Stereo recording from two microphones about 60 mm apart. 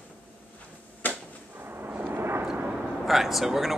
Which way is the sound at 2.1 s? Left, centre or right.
Right.